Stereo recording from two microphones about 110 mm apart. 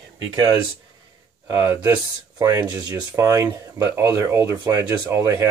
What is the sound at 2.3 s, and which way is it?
Speech, 35° right (ahead or behind).